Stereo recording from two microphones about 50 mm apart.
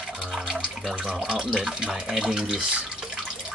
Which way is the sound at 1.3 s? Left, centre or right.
Centre.